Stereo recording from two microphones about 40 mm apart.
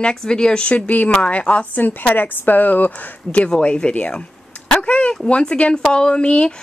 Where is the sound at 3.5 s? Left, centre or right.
Left.